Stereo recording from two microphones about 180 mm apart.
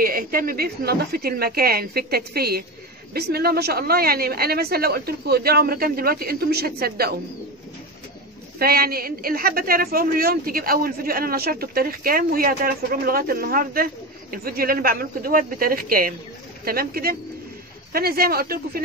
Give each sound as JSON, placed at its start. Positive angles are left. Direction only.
{"t": 0.0, "sound": "a woman's voice", "side_deg": -55}
{"t": 8.5, "sound": "a woman's voice", "side_deg": -55}